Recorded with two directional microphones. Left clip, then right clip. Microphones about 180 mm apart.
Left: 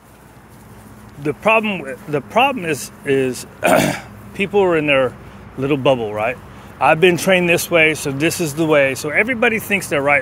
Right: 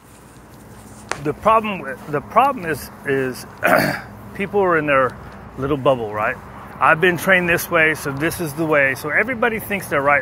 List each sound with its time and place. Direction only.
1.2 s a man's voice: 40° left (ahead or behind)
1.6 s a man's voice: 60° left (ahead or behind)
6.8 s speech: 60° left (ahead or behind); by 9.8 s 80° left
9.8 s speech: 60° left (ahead or behind)